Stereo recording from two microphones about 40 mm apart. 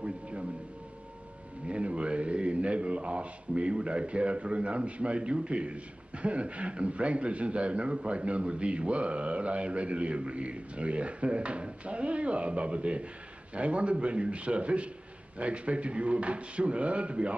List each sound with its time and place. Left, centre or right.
0.0 s music: right
1.7 s a man's voice: right